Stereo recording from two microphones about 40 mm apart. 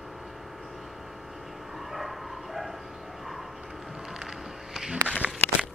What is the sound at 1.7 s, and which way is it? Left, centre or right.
Bow-wow, centre.